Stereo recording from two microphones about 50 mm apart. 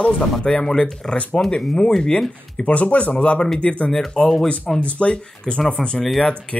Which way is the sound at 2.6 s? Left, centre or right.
Left.